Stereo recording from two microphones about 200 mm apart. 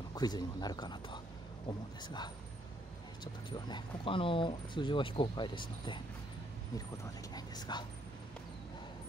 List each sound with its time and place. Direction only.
0.1 s speech: 20° left (ahead or behind)
3.4 s speech: 20° left (ahead or behind)
7.3 s speech: 20° left (ahead or behind)